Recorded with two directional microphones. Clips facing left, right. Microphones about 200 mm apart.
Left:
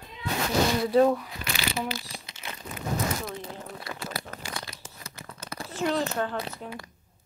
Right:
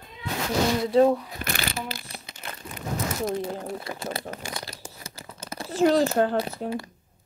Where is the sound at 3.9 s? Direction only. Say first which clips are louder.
Right 3 dB; 15° right (ahead or behind).